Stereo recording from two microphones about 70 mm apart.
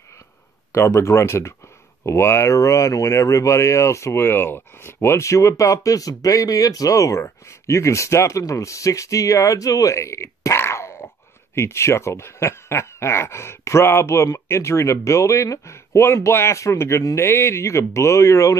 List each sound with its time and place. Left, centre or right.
0.7 s speech: left